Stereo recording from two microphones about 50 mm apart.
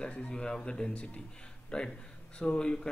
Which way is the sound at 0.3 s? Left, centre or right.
Centre.